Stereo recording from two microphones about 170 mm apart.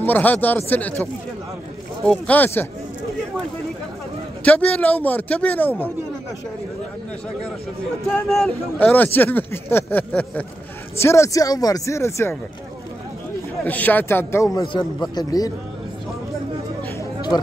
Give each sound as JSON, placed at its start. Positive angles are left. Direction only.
{"t": 0.0, "sound": "speech", "side_deg": 10}
{"t": 2.0, "sound": "speech", "side_deg": 10}
{"t": 4.5, "sound": "speech", "side_deg": 10}
{"t": 8.3, "sound": "speech", "side_deg": 5}
{"t": 13.7, "sound": "speech", "side_deg": 10}
{"t": 14.7, "sound": "speech", "side_deg": 25}